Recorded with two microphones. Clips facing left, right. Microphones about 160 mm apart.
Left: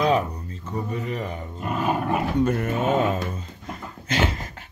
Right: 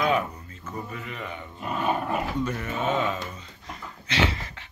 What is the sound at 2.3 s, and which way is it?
Speech, 50° left (ahead or behind).